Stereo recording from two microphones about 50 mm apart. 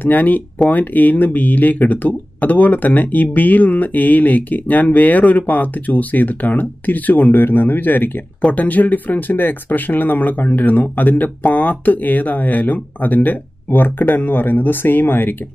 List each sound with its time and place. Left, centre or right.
0.0 s speech: left